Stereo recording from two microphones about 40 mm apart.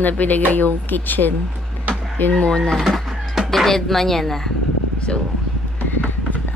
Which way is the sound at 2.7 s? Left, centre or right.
Centre.